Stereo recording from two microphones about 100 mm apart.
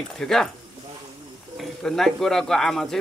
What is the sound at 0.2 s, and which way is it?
Speech, 5° left (ahead or behind).